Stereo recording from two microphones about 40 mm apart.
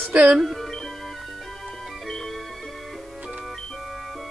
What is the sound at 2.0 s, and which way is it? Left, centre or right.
Music, centre.